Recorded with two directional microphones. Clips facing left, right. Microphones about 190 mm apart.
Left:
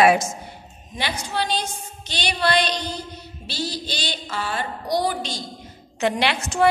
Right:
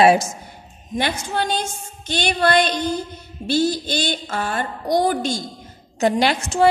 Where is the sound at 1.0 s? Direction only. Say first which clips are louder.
Right 4 dB; 50° right (ahead or behind).